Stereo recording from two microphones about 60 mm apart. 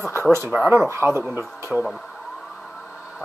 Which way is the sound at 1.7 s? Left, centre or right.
Centre.